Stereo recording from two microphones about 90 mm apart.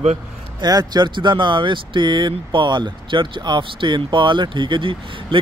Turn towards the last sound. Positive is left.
turn(degrees=-65)  # may be behind; listen again after turning